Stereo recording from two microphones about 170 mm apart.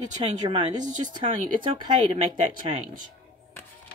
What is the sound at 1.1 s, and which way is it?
Speech, 30° right (ahead or behind).